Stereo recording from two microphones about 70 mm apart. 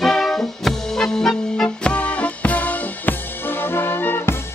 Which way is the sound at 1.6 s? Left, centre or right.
Centre.